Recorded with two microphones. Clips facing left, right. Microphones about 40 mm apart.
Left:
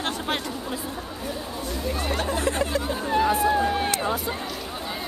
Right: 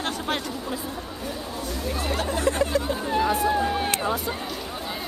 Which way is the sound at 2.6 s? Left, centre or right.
Centre.